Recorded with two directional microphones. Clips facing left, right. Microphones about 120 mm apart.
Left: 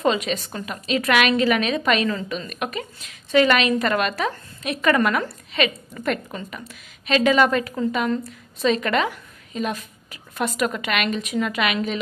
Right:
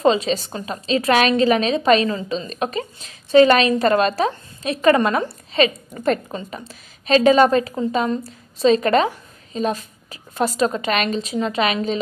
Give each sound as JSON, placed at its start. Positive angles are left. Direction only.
{"t": 0.0, "sound": "a woman's voice", "side_deg": -30}